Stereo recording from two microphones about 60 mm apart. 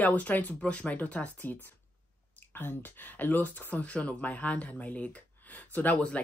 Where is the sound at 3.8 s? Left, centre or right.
Left.